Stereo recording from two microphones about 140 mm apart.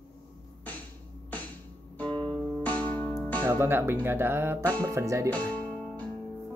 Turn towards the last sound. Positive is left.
turn(degrees=10)  # may be behind; listen again after turning